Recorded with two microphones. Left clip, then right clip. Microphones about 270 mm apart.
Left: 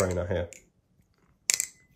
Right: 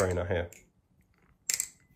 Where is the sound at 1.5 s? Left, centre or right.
Centre.